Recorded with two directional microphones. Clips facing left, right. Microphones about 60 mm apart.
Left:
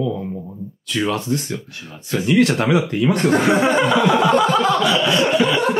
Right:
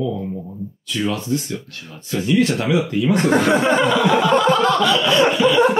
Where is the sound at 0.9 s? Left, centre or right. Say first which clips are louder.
Left 1 dB; left.